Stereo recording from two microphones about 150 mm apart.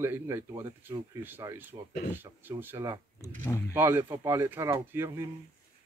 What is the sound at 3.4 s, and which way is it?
Speech, 20° left (ahead or behind).